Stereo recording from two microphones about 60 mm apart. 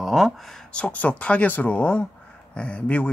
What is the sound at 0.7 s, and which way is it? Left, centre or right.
Speech, left.